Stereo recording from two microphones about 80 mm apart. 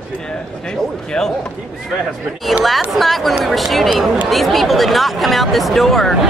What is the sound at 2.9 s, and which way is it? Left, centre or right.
Speech, centre.